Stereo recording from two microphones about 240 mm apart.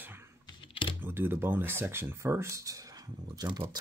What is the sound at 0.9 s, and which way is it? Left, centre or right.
Speech, centre.